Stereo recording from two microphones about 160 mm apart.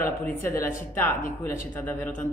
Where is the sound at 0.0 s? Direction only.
15° left (ahead or behind).